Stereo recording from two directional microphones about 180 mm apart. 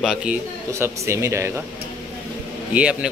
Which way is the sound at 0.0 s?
5° right (ahead or behind).